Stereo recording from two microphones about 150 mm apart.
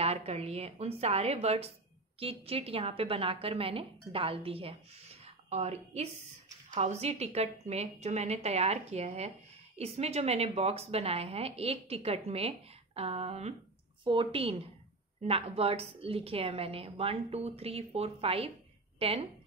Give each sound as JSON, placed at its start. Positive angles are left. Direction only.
{"t": 0.0, "sound": "a woman's voice", "side_deg": -45}
{"t": 14.0, "sound": "a woman's voice", "side_deg": -35}